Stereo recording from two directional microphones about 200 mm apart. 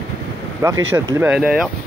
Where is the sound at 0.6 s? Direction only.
15° right (ahead or behind).